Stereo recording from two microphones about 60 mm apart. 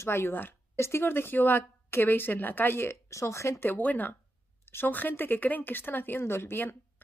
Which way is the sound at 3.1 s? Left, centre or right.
Left.